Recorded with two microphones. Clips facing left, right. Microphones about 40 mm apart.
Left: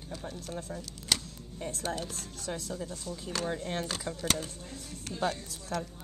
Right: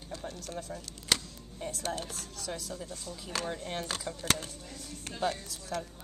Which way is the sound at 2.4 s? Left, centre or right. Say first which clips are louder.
Left 2 dB; left.